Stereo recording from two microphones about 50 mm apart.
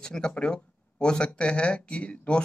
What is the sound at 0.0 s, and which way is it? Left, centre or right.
Speech, centre.